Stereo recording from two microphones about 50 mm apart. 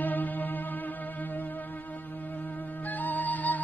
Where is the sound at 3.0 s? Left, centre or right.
Left.